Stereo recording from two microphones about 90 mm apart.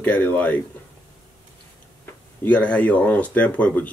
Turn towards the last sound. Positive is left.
turn(degrees=15)  # may be behind; listen again after turning